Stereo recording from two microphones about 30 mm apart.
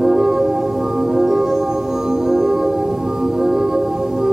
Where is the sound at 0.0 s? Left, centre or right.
Centre.